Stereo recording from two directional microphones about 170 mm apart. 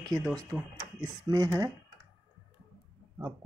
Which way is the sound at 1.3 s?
20° right (ahead or behind).